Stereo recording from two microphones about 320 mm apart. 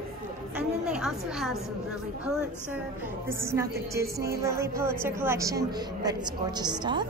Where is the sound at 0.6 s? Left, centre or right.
Centre.